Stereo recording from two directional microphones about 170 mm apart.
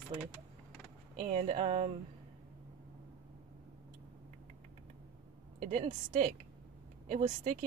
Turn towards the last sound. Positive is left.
turn(degrees=-45)  # may be behind; listen again after turning